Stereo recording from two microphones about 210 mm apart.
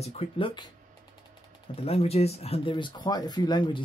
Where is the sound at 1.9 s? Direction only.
30° left (ahead or behind).